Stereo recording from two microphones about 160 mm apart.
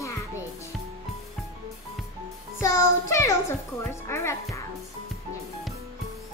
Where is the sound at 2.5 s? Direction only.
20° left (ahead or behind).